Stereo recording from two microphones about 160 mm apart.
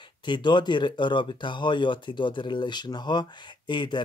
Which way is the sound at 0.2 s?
30° left (ahead or behind).